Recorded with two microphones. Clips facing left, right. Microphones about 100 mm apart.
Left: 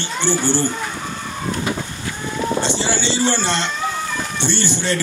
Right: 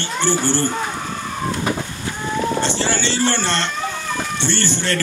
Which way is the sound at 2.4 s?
15° left (ahead or behind).